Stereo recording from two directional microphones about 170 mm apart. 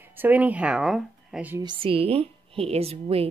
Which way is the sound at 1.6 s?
30° right (ahead or behind).